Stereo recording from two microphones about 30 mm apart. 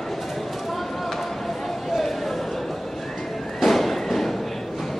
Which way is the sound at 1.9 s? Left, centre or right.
Centre.